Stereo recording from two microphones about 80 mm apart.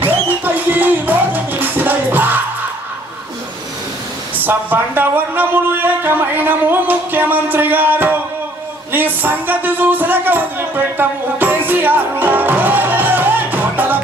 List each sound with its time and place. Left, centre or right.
0.4 s music: right
4.4 s speech: right